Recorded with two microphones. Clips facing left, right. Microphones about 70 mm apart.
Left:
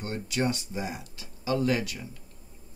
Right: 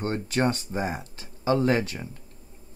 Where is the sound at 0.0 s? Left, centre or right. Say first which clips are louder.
Right 4 dB; right.